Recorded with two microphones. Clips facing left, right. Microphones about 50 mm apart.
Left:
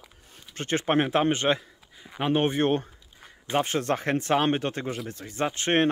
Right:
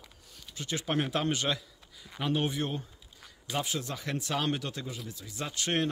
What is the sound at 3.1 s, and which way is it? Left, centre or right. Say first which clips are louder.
Speech: left 8 dB; left.